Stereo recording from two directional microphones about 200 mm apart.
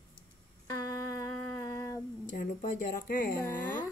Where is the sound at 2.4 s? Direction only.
45° left (ahead or behind).